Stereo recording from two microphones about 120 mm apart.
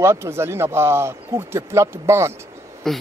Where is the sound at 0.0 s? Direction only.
20° right (ahead or behind).